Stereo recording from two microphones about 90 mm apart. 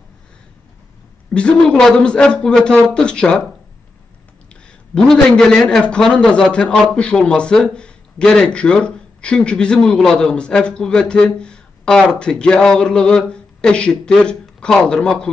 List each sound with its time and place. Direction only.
1.3 s a man's voice: 10° left (ahead or behind)
4.9 s a man's voice: 5° left (ahead or behind)